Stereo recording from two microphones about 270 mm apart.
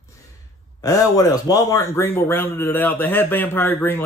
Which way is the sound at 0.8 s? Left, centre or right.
Centre.